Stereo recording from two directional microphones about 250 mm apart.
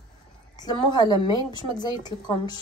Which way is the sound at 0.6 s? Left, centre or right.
Centre.